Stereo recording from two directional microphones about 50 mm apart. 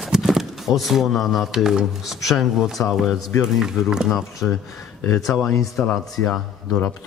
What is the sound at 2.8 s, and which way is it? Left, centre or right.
Speech, left.